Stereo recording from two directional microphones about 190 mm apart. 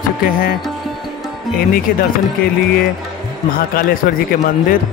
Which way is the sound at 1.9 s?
50° left (ahead or behind).